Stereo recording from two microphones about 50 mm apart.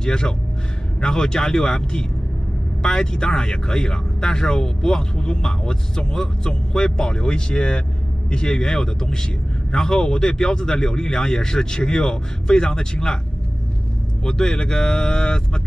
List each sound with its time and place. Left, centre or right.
0.0 s a man's voice: centre
14.2 s speech: centre